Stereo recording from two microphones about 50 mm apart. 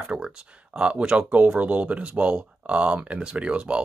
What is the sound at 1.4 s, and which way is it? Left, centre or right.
Speech, right.